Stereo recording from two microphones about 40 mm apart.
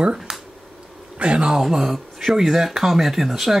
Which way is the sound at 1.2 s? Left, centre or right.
Right.